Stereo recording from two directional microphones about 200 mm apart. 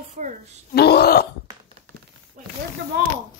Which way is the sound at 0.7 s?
55° left (ahead or behind).